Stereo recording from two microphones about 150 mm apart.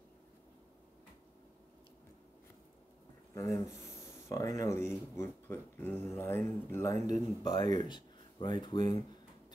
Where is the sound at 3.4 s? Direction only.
20° left (ahead or behind).